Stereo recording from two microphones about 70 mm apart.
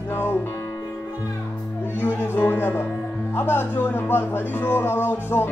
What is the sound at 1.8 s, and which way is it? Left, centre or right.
Speech, left.